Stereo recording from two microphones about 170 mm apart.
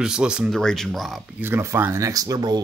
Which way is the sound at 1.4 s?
15° right (ahead or behind).